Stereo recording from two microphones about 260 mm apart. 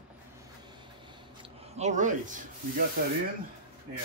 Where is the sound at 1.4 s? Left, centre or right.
Right.